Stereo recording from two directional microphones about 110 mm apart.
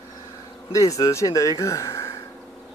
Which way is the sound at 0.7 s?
30° left (ahead or behind).